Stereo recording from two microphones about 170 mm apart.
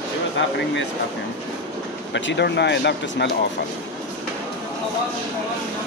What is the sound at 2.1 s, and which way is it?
Speech, 90° left.